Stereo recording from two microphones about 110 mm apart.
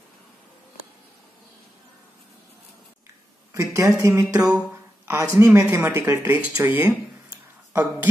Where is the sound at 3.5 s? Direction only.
30° right (ahead or behind).